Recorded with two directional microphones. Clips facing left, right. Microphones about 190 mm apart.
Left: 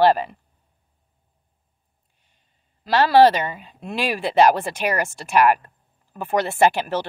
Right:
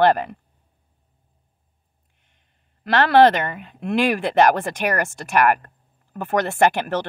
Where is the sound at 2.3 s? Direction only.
55° right (ahead or behind).